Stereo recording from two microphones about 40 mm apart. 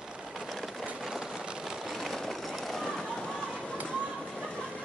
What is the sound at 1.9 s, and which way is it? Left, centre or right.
Vehicle, centre.